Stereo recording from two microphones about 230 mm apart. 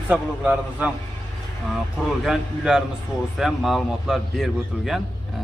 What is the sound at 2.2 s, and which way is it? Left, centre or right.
A man's voice, centre.